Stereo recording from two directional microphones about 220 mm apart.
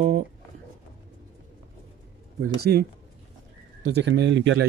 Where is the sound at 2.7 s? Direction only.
45° right (ahead or behind).